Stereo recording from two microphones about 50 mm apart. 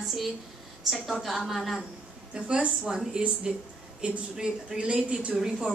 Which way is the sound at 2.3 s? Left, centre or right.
Right.